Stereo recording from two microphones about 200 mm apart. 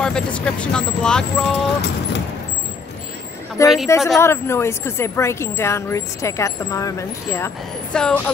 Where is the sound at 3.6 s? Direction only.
15° left (ahead or behind).